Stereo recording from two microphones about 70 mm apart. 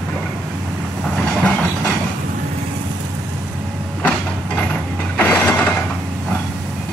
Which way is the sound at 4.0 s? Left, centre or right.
Centre.